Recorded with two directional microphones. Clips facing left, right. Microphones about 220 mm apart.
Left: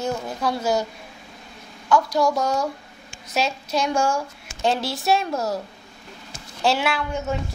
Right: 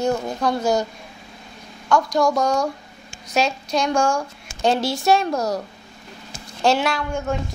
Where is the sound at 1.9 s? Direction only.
5° left (ahead or behind).